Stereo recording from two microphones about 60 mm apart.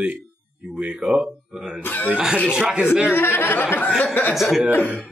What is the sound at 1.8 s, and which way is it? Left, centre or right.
Speech, left.